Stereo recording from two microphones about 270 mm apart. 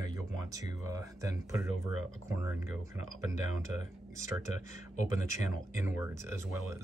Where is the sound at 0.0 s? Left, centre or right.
Centre.